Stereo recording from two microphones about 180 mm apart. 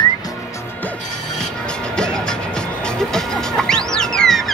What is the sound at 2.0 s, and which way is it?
Music, 5° left (ahead or behind).